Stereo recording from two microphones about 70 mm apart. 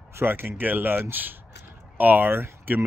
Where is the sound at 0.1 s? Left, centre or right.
Right.